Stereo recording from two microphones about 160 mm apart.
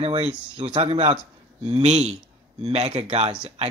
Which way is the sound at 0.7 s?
35° right (ahead or behind).